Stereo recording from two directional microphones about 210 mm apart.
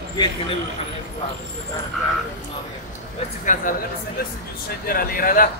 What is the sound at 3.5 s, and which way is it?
Speech, 40° left (ahead or behind).